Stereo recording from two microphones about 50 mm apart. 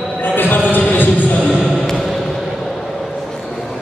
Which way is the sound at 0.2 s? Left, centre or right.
Left.